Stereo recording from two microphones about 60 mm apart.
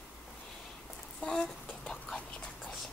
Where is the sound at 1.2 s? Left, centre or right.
Centre.